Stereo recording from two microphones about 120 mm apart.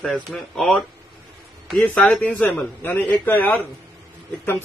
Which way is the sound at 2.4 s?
15° left (ahead or behind).